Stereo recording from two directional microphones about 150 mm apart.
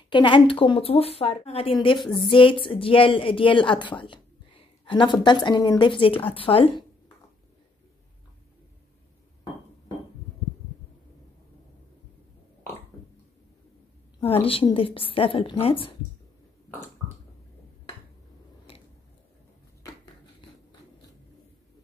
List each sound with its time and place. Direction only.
0.1 s a woman's voice: 35° left (ahead or behind)
14.2 s speech: 40° left (ahead or behind)